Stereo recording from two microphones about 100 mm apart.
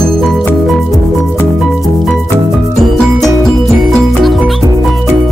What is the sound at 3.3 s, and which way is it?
Music, 35° left (ahead or behind).